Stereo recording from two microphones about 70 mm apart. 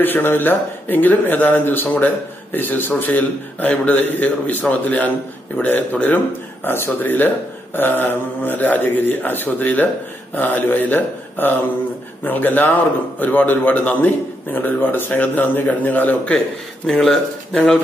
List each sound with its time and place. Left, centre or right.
0.0 s speech: left
16.8 s speech: centre